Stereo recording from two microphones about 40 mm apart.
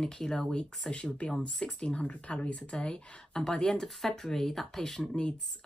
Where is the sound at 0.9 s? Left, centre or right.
Left.